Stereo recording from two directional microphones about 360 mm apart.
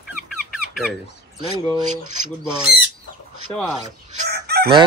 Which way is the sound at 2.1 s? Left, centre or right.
Right.